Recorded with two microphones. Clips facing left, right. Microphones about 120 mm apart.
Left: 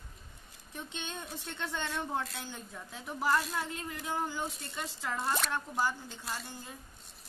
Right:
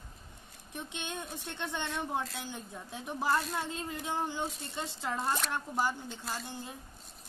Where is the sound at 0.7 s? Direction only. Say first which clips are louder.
Right 2 dB; 15° right (ahead or behind).